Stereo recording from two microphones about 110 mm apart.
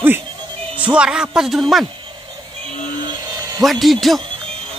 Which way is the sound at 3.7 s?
Centre (ahead or behind).